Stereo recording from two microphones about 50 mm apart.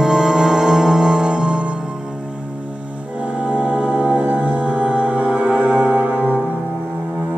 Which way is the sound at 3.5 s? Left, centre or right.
Right.